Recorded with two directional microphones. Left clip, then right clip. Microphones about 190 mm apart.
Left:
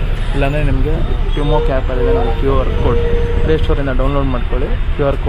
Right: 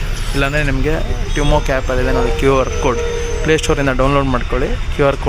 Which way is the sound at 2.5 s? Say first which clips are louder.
Right 4 dB; 20° right (ahead or behind).